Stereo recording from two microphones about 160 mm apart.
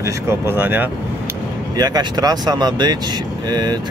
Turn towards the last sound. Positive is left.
turn(degrees=-25)  # may be behind; listen again after turning